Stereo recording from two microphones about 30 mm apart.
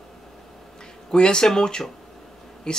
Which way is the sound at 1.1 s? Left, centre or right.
Left.